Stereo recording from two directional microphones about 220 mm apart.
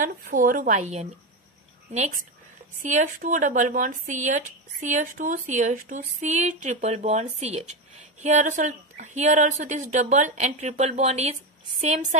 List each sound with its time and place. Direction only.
0.0 s speech: 40° right (ahead or behind)